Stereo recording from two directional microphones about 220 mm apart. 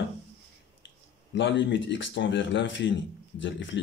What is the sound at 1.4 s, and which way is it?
Speech, 55° left (ahead or behind).